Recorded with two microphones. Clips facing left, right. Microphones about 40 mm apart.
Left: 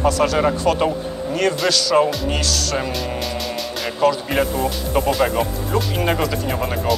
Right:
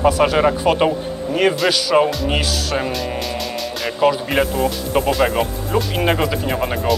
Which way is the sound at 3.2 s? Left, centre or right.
Centre.